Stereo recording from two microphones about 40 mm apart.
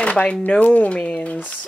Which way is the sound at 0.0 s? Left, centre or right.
Left.